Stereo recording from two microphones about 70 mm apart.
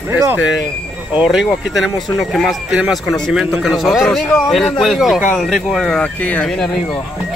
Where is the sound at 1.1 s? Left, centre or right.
Centre.